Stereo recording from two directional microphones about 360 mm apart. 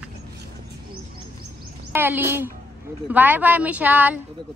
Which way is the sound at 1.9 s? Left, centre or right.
Centre.